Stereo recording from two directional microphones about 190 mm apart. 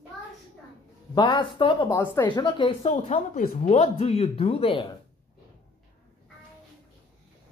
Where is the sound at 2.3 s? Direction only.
25° left (ahead or behind).